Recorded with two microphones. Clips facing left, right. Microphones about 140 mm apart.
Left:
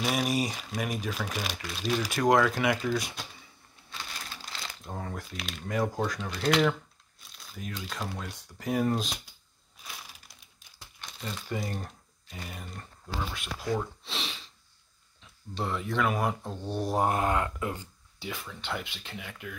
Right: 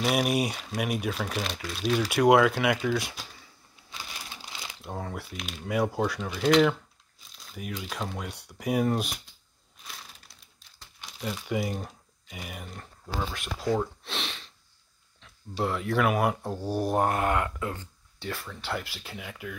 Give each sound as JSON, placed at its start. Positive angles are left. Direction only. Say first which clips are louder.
{"t": 0.1, "sound": "speech", "louder": "right 3 dB", "side_deg": -10}
{"t": 1.2, "sound": "speech", "louder": "right 3 dB", "side_deg": 10}
{"t": 4.2, "sound": "speech", "louder": "even", "side_deg": -15}
{"t": 9.8, "sound": "crumpling", "louder": "even", "side_deg": 10}
{"t": 11.0, "sound": "speech", "louder": "right 4 dB", "side_deg": -5}
{"t": 14.0, "sound": "sniff", "louder": "right 2 dB", "side_deg": 0}
{"t": 15.5, "sound": "speech", "louder": "right 4 dB", "side_deg": -5}
{"t": 17.1, "sound": "speech", "louder": "right 1 dB", "side_deg": 25}
{"t": 18.2, "sound": "speech", "louder": "right 2 dB", "side_deg": 0}